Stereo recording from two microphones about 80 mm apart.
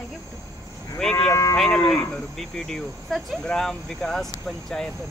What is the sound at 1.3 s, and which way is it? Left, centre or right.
Speech, left.